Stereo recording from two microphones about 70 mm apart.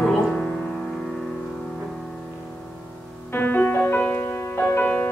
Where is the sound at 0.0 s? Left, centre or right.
Centre.